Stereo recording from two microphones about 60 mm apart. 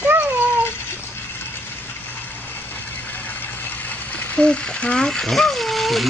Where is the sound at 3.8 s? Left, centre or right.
Left.